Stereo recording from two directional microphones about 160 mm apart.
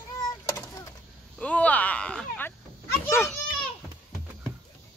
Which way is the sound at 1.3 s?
10° left (ahead or behind).